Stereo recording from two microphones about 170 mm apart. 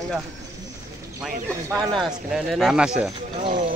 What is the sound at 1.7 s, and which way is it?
Speech, centre (ahead or behind).